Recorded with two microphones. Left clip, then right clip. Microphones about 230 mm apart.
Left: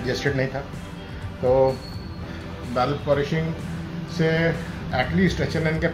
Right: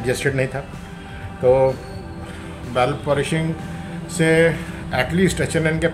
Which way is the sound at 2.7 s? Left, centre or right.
Right.